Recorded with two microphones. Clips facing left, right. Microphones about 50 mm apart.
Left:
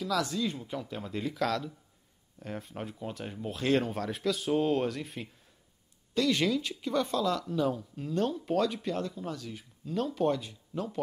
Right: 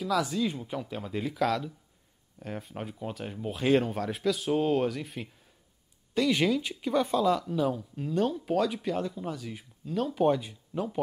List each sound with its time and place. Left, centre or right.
0.0 s speech: centre
6.1 s speech: centre
10.1 s speech: centre